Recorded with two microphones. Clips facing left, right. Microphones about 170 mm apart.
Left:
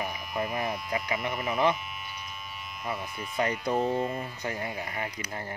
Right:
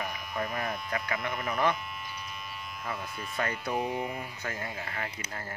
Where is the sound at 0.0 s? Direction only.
10° left (ahead or behind).